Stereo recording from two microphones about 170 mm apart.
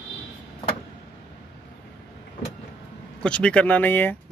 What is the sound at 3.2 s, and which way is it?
Speech, 5° left (ahead or behind).